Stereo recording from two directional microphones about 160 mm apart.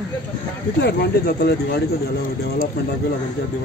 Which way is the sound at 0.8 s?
90° left.